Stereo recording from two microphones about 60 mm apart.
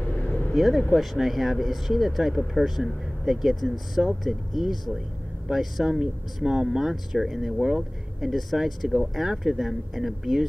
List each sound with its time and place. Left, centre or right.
0.0 s vehicle: centre
0.6 s speech: centre